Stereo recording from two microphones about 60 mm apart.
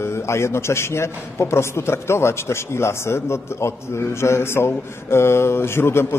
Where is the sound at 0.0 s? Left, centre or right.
Left.